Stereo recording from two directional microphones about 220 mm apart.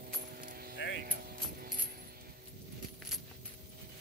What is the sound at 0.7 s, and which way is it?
Keys jangling, 55° left (ahead or behind).